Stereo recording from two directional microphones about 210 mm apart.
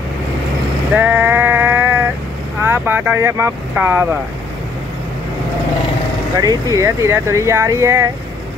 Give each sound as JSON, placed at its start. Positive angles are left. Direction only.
{"t": 0.9, "sound": "sheep", "side_deg": -10}
{"t": 2.6, "sound": "speech", "side_deg": -10}
{"t": 6.3, "sound": "speech", "side_deg": -15}